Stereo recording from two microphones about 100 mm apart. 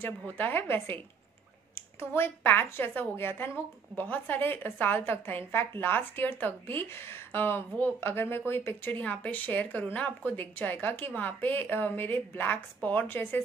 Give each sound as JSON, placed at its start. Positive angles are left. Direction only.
{"t": 0.0, "sound": "a woman's voice", "side_deg": 20}